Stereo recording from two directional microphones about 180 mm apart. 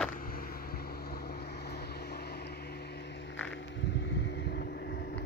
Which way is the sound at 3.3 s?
5° left (ahead or behind).